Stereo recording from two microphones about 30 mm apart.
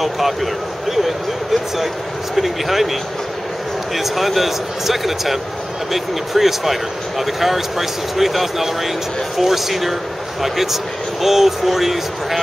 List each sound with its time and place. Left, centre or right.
0.0 s speech: centre